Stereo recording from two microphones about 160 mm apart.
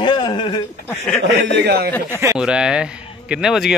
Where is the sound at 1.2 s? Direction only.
90° right.